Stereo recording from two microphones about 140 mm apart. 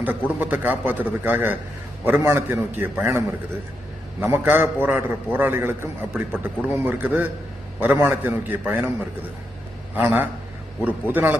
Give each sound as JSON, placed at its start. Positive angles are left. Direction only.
{"t": 0.4, "sound": "a man's voice", "side_deg": -10}
{"t": 4.3, "sound": "a man's voice", "side_deg": -15}
{"t": 9.9, "sound": "a man's voice", "side_deg": -10}